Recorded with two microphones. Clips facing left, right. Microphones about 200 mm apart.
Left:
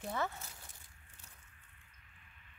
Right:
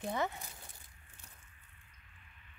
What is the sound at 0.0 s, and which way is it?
Speech, 15° right (ahead or behind).